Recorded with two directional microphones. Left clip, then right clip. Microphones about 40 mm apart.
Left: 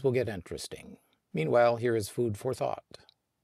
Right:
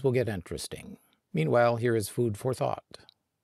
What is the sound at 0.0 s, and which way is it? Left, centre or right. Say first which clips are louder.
Speech: right 1 dB; right.